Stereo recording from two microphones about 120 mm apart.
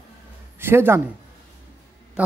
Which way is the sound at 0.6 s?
20° right (ahead or behind).